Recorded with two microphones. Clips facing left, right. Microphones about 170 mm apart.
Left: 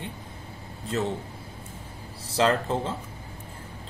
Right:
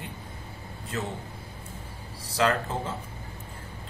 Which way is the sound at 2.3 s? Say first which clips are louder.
Left 2 dB; 25° left (ahead or behind).